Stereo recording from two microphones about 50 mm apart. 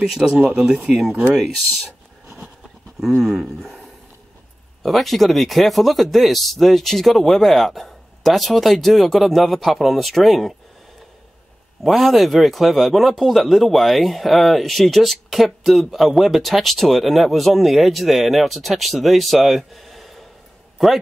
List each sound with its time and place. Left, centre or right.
0.0 s speech: centre
0.8 s speech: centre
3.3 s speech: centre
4.8 s speech: centre
11.8 s a man's voice: centre